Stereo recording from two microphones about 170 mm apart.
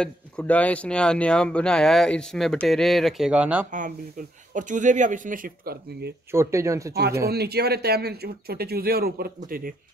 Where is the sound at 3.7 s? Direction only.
50° right (ahead or behind); by 6.1 s 70° right (ahead or behind).